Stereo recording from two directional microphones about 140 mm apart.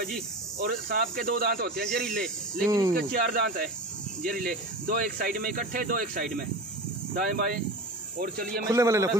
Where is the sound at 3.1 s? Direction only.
90° right.